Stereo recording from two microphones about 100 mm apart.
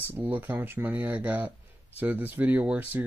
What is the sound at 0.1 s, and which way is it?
Speech, 15° right (ahead or behind).